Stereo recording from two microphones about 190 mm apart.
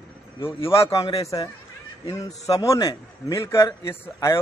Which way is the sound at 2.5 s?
20° left (ahead or behind).